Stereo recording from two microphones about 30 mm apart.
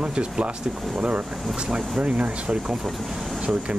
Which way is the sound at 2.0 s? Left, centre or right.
Right.